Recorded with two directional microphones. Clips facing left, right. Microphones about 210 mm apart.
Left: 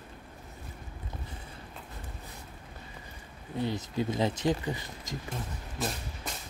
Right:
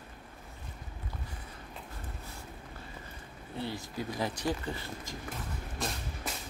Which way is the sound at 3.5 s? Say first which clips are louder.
Left 6 dB; 20° left (ahead or behind).